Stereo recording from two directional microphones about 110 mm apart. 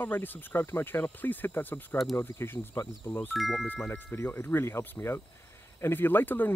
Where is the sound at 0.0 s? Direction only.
20° left (ahead or behind).